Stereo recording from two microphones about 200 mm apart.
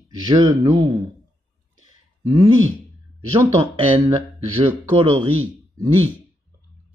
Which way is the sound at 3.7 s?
30° right (ahead or behind).